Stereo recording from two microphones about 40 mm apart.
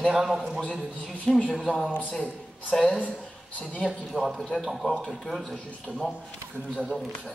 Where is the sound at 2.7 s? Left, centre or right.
Centre.